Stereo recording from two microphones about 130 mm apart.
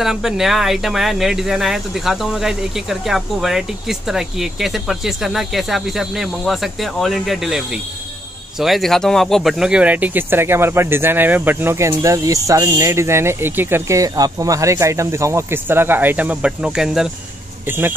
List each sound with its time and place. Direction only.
0.0 s speech: 5° right (ahead or behind)
17.6 s speech: 15° right (ahead or behind)